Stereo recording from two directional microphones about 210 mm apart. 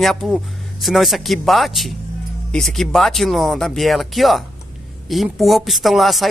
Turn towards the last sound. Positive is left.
turn(degrees=0)  # may be behind; listen again after turning